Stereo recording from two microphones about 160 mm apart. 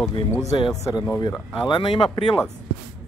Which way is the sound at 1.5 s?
30° left (ahead or behind).